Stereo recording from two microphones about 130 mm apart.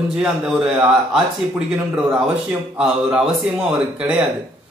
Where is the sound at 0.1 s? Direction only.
5° right (ahead or behind).